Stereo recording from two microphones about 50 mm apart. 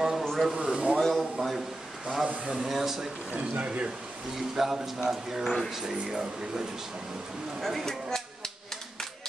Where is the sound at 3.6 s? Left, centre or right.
Right.